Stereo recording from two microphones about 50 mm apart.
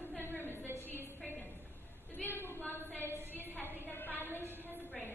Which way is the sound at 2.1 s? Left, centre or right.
Left.